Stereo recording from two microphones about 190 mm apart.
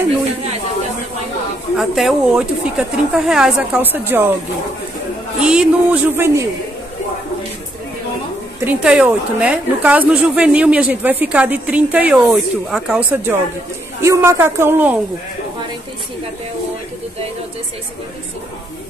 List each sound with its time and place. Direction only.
1.8 s a woman's voice: centre (ahead or behind)
5.4 s a woman's voice: 5° right (ahead or behind)
8.6 s a woman's voice: 5° right (ahead or behind)